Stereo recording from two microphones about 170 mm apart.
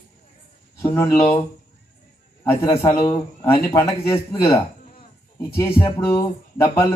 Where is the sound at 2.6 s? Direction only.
20° left (ahead or behind).